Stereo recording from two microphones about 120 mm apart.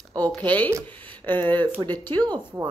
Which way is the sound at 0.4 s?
15° left (ahead or behind).